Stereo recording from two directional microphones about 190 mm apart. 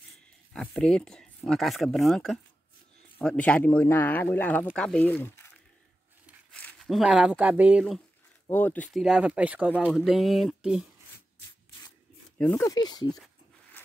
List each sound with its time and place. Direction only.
0.5 s speech: 5° left (ahead or behind)
6.5 s speech: 5° left (ahead or behind)
8.5 s speech: 10° left (ahead or behind)
9.0 s speech: 5° right (ahead or behind)
12.4 s speech: 10° left (ahead or behind)